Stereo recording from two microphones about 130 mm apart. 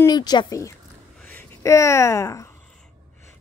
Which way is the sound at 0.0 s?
30° left (ahead or behind).